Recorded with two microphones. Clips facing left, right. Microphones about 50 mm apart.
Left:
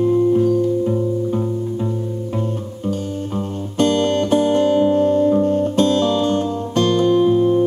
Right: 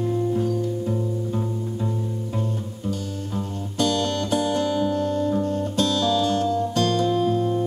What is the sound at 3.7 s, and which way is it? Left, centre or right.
Music, left.